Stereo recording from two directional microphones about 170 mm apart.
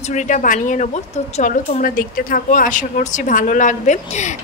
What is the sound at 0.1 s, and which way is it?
Speech, 50° left (ahead or behind).